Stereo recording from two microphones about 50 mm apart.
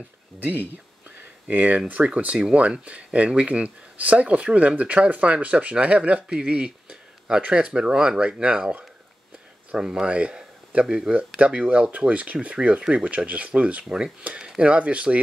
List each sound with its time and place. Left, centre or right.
0.4 s a sound: right
1.9 s speech: right
9.8 s a man's voice: centre
13.8 s speech: centre